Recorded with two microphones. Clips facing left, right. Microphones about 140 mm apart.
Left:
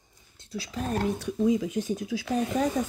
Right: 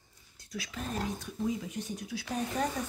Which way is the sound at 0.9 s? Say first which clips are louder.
Left 9 dB; 80° left.